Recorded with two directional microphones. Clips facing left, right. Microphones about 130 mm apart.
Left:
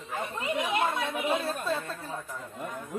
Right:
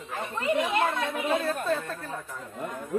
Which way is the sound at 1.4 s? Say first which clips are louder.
Right 3 dB; 50° right (ahead or behind).